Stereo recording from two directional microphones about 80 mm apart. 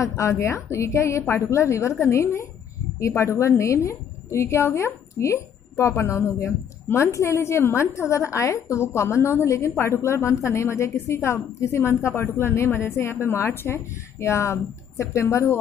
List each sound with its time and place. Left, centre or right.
0.0 s a woman's voice: left